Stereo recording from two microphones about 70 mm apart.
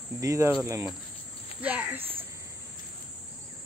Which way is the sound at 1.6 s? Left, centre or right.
Right.